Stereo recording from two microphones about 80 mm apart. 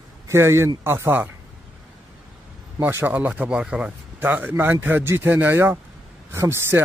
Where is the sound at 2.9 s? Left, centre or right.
Right; by 3.9 s centre.